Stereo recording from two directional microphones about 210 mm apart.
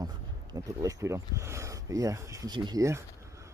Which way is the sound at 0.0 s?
15° right (ahead or behind).